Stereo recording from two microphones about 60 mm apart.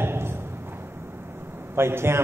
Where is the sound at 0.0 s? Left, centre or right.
Right.